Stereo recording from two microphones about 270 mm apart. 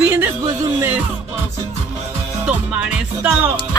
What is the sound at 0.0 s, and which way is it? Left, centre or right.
Music, centre.